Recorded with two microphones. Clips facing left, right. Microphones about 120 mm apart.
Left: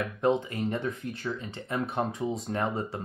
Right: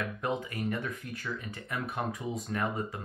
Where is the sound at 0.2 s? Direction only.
30° left (ahead or behind).